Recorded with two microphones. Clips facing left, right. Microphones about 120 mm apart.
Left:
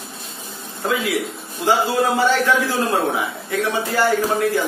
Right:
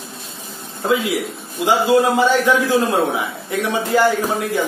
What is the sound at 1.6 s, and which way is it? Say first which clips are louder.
A man's voice: right 3 dB; 15° right (ahead or behind).